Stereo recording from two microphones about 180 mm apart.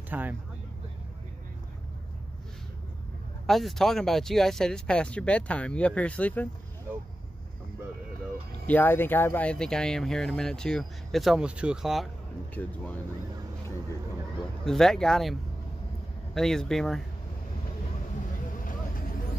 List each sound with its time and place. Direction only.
0.1 s speech: 10° right (ahead or behind)
3.4 s speech: centre (ahead or behind)
8.6 s speech: 10° left (ahead or behind)
12.6 s speech: 10° left (ahead or behind)
14.6 s speech: 5° left (ahead or behind)
16.3 s speech: centre (ahead or behind)
18.6 s vehicle: 50° left (ahead or behind)